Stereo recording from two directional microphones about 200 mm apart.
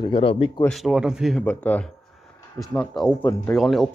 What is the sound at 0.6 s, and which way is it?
A man's voice, centre (ahead or behind).